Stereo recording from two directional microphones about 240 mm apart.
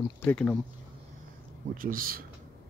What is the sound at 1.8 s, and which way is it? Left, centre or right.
Speech, right.